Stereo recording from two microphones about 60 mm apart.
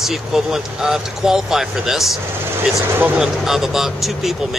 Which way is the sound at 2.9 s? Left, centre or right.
Right.